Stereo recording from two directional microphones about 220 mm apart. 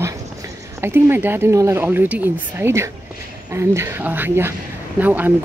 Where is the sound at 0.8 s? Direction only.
10° right (ahead or behind).